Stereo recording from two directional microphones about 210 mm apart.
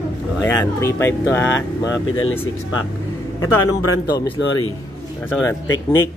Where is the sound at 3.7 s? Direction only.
90° left.